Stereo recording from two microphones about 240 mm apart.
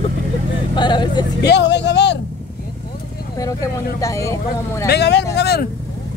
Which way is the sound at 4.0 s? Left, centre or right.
Centre.